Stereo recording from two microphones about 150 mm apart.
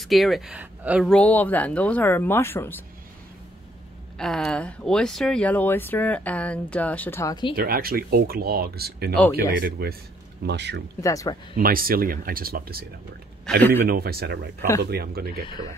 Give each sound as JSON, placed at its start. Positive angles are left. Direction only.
{"t": 0.0, "sound": "speech", "side_deg": 0}
{"t": 1.0, "sound": "speech", "side_deg": 5}
{"t": 4.2, "sound": "speech", "side_deg": 5}
{"t": 7.5, "sound": "speech", "side_deg": -85}
{"t": 11.0, "sound": "speech", "side_deg": 20}
{"t": 11.5, "sound": "speech", "side_deg": -75}
{"t": 13.5, "sound": "a man's voice", "side_deg": 5}
{"t": 13.8, "sound": "speech", "side_deg": -90}